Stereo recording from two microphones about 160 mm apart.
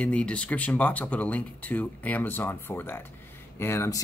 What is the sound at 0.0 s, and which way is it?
Speech, 5° left (ahead or behind).